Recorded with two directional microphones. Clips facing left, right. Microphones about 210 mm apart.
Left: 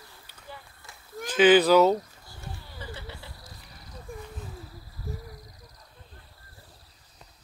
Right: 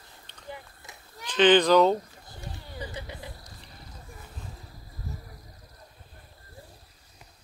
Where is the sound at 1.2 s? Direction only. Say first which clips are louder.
Left 1 dB; 5° left (ahead or behind).